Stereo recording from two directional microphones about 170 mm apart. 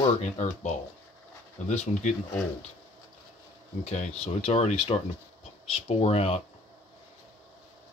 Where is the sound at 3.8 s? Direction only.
40° left (ahead or behind).